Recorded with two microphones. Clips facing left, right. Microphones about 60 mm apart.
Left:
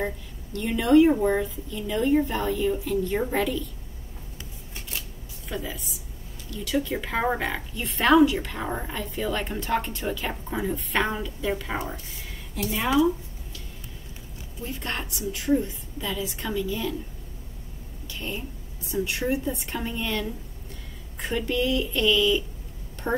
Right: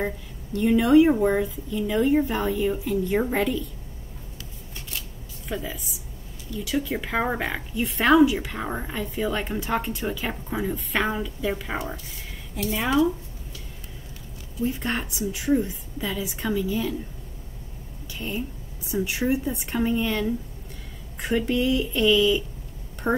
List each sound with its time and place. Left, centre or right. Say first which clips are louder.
0.0 s a woman's voice: right 1 dB; centre
5.5 s speech: right 2 dB; centre
14.6 s a woman's voice: right 6 dB; centre
18.0 s a sound: right 2 dB; centre
18.9 s a woman's voice: right 2 dB; centre
21.4 s a woman's voice: right 2 dB; centre